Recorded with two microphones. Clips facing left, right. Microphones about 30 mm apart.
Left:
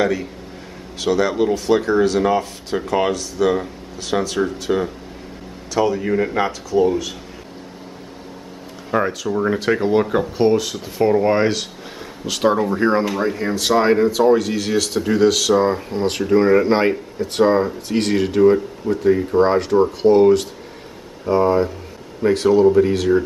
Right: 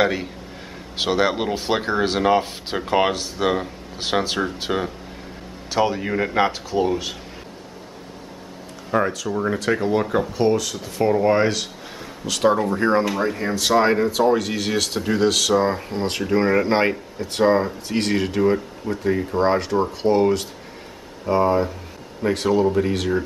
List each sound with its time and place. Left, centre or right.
0.0 s speech: right
4.7 s speech: centre
5.7 s speech: right
5.9 s speech: centre
8.9 s speech: centre